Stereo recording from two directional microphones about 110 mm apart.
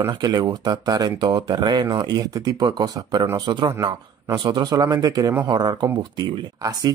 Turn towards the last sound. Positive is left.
turn(degrees=-35)  # may be behind; listen again after turning